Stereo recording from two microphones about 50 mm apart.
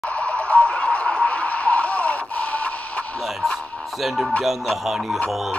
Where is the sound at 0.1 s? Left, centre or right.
Left.